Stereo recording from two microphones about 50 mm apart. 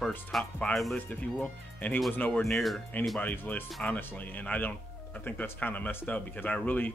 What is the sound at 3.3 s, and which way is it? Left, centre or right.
Speech, left.